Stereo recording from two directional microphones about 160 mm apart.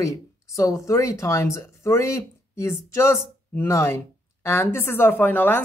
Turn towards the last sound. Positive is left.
turn(degrees=10)  # may be behind; listen again after turning